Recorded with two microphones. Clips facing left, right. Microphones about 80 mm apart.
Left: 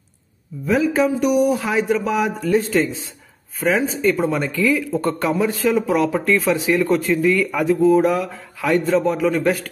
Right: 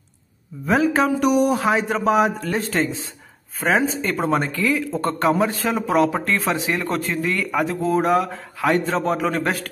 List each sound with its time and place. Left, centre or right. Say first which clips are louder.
0.7 s speech: left 1 dB; right